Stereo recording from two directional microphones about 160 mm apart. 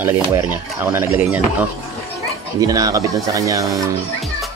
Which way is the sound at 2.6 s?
20° right (ahead or behind).